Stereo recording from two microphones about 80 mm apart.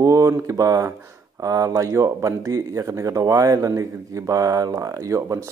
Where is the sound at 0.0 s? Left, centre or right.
Right.